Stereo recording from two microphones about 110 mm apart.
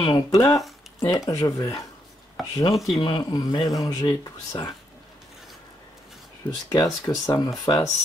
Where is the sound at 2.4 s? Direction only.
Centre (ahead or behind).